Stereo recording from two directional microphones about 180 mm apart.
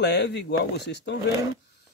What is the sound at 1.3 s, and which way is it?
Speech, 20° right (ahead or behind).